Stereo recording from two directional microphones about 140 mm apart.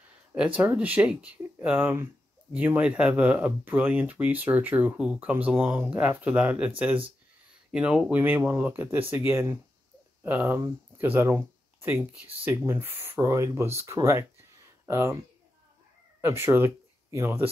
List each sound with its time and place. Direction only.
0.6 s speech: 10° right (ahead or behind)
7.7 s a child's voice: 5° right (ahead or behind)
16.2 s speech: 20° right (ahead or behind)